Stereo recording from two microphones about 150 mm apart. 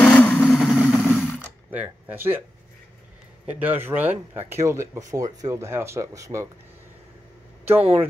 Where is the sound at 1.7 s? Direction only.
10° right (ahead or behind).